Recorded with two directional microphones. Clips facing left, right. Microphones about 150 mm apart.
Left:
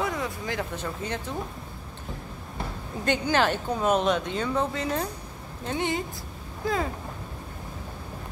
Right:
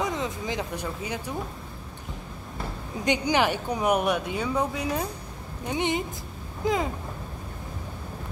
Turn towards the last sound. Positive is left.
turn(degrees=-20)  # may be behind; listen again after turning